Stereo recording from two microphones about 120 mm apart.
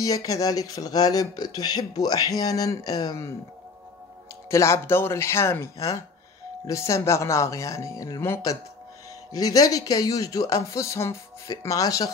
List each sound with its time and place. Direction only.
0.0 s speech: 30° left (ahead or behind)
4.5 s speech: 25° left (ahead or behind)